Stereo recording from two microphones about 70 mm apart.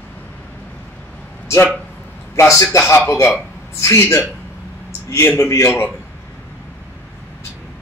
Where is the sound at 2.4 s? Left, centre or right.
Left.